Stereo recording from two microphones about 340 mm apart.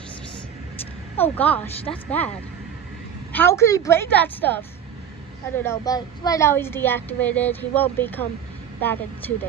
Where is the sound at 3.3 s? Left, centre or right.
Centre.